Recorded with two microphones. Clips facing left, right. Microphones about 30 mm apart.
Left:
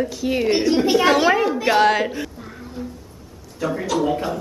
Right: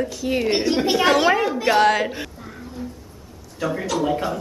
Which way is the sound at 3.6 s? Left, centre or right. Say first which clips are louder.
Left 1 dB; centre.